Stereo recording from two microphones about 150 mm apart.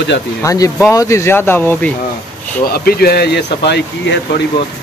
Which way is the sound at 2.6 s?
90° left.